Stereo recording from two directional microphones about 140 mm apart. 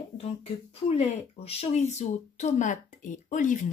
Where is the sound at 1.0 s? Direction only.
50° left (ahead or behind).